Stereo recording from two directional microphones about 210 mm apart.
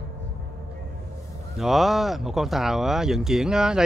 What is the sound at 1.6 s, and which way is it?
Speech, centre (ahead or behind).